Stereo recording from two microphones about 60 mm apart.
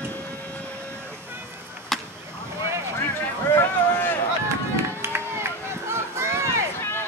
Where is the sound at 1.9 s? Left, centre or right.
Centre.